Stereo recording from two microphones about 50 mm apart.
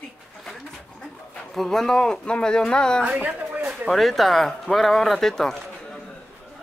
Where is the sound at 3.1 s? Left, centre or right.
Right.